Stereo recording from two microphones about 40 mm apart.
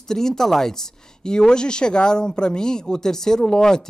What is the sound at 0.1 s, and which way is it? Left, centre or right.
Speech, centre.